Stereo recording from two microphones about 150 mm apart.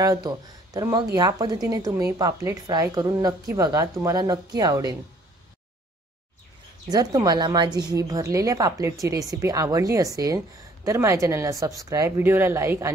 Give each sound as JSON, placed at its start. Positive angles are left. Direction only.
{"t": 0.0, "sound": "a woman's voice", "side_deg": -25}
{"t": 6.9, "sound": "a woman's voice", "side_deg": -25}